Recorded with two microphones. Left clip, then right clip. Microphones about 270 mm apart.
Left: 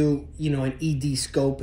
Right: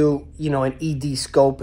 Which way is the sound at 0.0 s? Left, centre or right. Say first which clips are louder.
Right 5 dB; centre.